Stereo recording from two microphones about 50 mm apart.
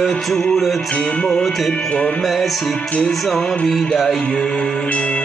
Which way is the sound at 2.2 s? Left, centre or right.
Centre.